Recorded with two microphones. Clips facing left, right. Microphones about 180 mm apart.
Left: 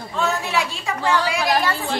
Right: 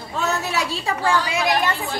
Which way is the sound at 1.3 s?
20° right (ahead or behind).